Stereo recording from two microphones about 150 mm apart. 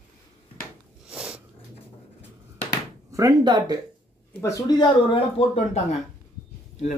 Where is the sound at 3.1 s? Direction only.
25° right (ahead or behind).